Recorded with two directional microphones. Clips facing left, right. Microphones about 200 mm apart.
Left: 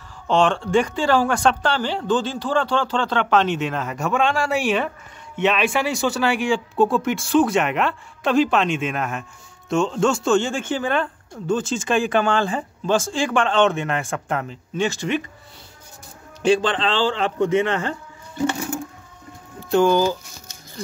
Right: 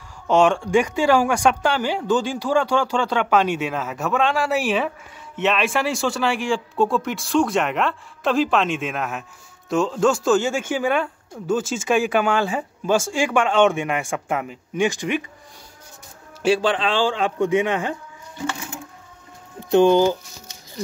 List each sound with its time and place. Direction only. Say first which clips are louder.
0.3 s speech: right 1 dB; 10° right (ahead or behind)
16.4 s speech: left 1 dB; 10° right (ahead or behind)
18.5 s music: left 6 dB; 35° left (ahead or behind)
19.7 s speech: right 2 dB; 20° right (ahead or behind)